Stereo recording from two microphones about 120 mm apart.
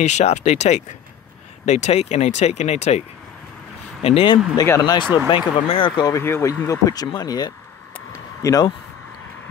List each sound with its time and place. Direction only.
0.0 s speech: 70° left (ahead or behind)
4.0 s speech: 50° left (ahead or behind)
4.6 s speech: 25° left (ahead or behind)
4.9 s speech: 45° left (ahead or behind)
6.1 s speech: 25° left (ahead or behind)
8.1 s a sound: 25° left (ahead or behind)